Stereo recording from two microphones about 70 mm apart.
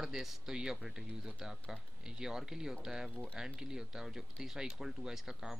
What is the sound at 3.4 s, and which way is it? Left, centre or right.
Speech, centre.